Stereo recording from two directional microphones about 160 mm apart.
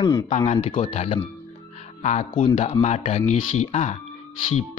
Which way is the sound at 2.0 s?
45° left (ahead or behind).